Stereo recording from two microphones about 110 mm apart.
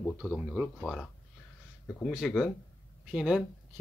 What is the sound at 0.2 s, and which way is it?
Speech, 10° right (ahead or behind).